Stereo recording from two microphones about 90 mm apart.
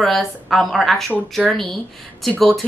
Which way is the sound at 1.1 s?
15° right (ahead or behind).